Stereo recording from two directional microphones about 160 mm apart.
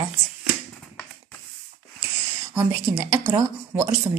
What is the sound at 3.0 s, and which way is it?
Speech, 15° right (ahead or behind).